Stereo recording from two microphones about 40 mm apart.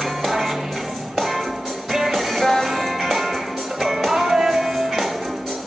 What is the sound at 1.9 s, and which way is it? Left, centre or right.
Music, centre.